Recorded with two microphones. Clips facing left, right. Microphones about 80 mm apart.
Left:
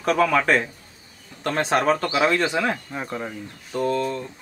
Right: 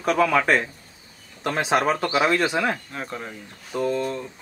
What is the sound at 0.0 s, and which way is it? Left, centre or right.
Speech, centre.